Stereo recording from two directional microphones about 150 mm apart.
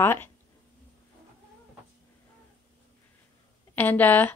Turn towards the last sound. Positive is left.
turn(degrees=10)  # may be behind; listen again after turning